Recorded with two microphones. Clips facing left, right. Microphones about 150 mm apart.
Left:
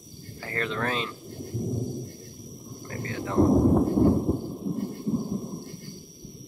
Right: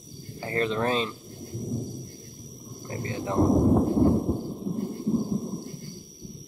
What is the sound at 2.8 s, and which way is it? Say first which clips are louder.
Thunder: right 1 dB; 20° right (ahead or behind).